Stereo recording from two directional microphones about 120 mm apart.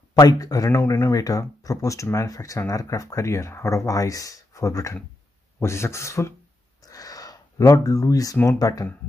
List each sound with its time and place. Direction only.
0.2 s speech: 30° left (ahead or behind)
6.8 s a sound: 30° left (ahead or behind)
8.4 s speech: 25° left (ahead or behind)